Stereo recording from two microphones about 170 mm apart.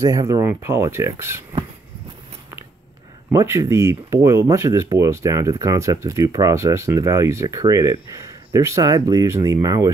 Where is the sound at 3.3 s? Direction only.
15° right (ahead or behind).